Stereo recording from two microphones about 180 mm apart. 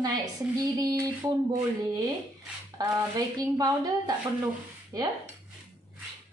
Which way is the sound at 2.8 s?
20° right (ahead or behind).